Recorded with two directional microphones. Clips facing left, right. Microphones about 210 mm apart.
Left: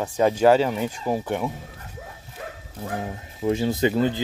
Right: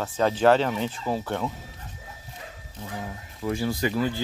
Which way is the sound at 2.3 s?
55° left (ahead or behind).